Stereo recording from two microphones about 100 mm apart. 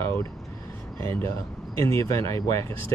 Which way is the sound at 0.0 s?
25° left (ahead or behind).